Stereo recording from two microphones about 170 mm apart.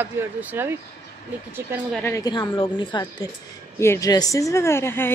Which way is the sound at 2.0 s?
20° left (ahead or behind).